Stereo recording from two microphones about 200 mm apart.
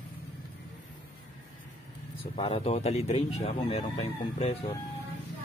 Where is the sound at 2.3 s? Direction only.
30° left (ahead or behind).